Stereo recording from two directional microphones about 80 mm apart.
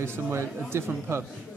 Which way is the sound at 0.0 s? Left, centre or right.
Right.